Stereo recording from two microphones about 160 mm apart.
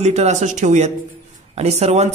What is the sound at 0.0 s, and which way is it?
A man's voice, 45° right (ahead or behind).